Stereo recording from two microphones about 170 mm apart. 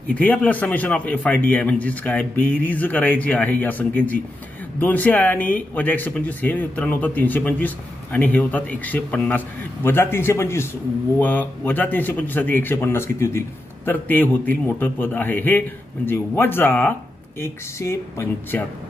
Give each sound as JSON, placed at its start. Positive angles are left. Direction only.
{"t": 0.1, "sound": "speech", "side_deg": 10}